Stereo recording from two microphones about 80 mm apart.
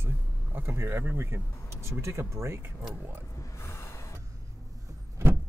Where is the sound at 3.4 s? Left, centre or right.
Left.